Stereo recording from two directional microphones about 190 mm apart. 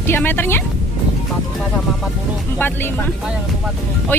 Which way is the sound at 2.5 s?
10° left (ahead or behind).